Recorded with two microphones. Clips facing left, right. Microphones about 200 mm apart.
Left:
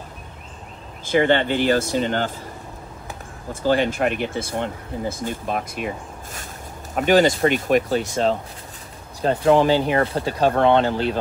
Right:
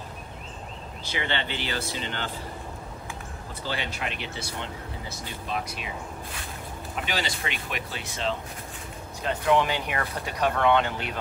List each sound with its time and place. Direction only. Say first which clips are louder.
1.0 s speech: left 13 dB; 50° left (ahead or behind)
3.6 s speech: left 14 dB; 50° left (ahead or behind)
7.0 s speech: left 16 dB; 50° left (ahead or behind); by 11.1 s 30° left (ahead or behind)